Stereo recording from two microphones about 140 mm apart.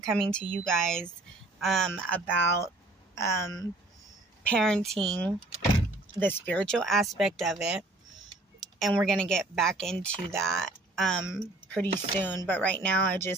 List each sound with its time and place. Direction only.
0.0 s speech: 5° left (ahead or behind)
1.9 s speech: 10° left (ahead or behind)
4.4 s speech: 5° left (ahead or behind)
8.5 s a sound: centre (ahead or behind)
8.9 s speech: 5° left (ahead or behind)